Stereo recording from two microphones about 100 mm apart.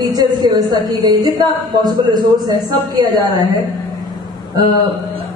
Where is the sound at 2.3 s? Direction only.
40° right (ahead or behind).